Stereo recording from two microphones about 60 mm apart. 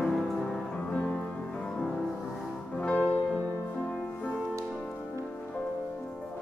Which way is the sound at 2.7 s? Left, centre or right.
Centre.